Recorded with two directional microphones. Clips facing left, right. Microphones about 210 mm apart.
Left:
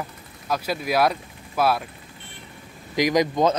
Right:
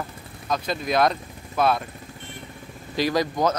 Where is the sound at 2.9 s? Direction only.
15° left (ahead or behind).